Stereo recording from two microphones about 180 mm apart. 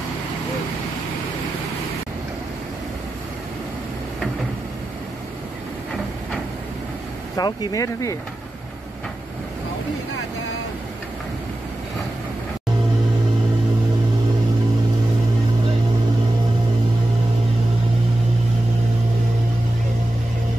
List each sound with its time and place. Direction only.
7.3 s speech: 20° left (ahead or behind)